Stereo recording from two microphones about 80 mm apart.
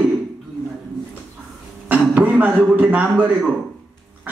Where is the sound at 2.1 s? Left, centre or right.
Right.